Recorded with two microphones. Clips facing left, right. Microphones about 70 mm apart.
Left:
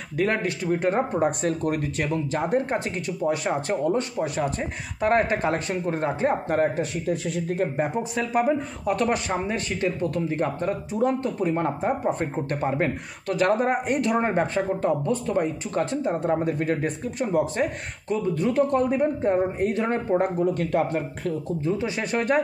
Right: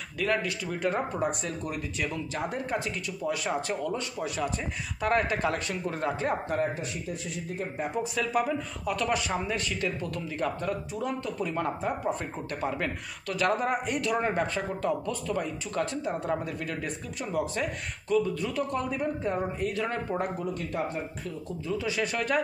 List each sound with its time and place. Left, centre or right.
0.2 s speech: left
1.4 s speech: left
2.0 s speech: left
6.5 s speech: left
7.1 s speech: left
7.7 s speech: left
20.4 s speech: left
21.5 s speech: left